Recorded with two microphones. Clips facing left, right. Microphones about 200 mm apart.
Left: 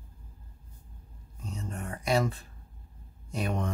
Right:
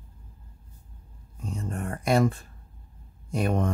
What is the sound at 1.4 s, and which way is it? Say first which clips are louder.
Speech: right 5 dB; 50° right (ahead or behind).